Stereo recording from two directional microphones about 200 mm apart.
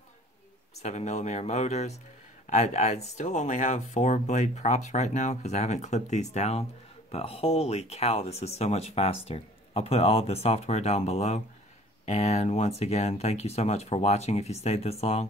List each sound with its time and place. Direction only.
0.8 s speech: 35° left (ahead or behind)